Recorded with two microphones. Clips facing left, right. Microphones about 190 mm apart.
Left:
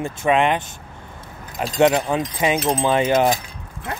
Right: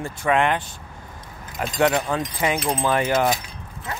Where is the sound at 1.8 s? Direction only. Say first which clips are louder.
Left 4 dB; 20° left (ahead or behind).